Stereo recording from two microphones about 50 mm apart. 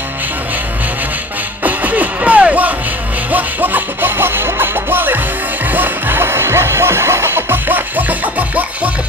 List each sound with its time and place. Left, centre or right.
1.6 s music: right